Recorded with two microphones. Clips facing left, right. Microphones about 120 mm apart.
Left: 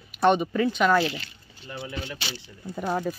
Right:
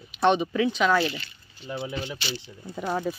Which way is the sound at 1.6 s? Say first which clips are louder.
Right 4 dB; 20° right (ahead or behind).